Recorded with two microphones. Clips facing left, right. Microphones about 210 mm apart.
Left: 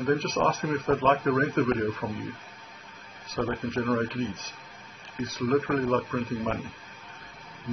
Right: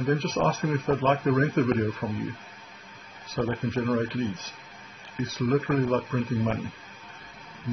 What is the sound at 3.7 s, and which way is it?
Speech, 5° right (ahead or behind).